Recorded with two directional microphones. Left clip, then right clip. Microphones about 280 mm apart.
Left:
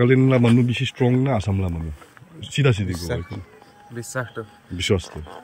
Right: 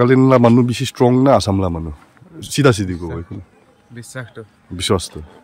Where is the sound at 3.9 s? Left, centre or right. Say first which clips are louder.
Left 3 dB; centre.